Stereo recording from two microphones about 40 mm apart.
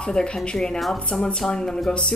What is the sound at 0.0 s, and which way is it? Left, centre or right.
Speech, left.